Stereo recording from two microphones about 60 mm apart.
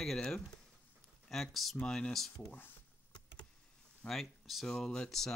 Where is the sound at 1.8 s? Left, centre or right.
Centre.